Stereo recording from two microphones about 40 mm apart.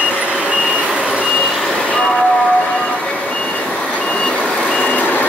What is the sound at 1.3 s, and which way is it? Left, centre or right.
Vehicle, centre.